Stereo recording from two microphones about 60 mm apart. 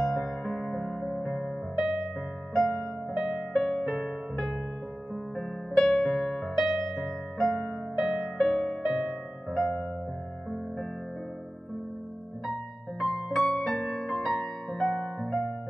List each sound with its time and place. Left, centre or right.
0.0 s music: centre
1.2 s music: centre
1.8 s music: centre
3.2 s music: centre
3.5 s music: centre
5.8 s music: centre
9.5 s music: centre
13.0 s music: centre